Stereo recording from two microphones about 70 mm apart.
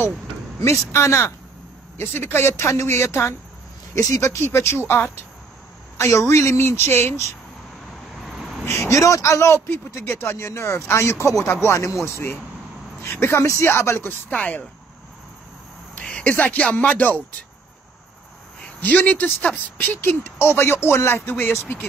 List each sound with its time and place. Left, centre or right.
0.6 s speech: left
5.9 s speech: left
8.2 s a sound: centre
8.6 s speech: left
14.3 s speech: centre
16.0 s speech: centre
18.8 s speech: left